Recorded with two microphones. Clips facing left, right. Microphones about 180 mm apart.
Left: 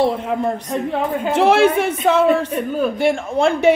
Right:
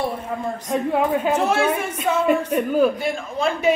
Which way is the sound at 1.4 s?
85° left.